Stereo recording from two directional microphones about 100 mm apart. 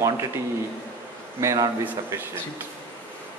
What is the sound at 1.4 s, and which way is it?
Speech, 30° right (ahead or behind).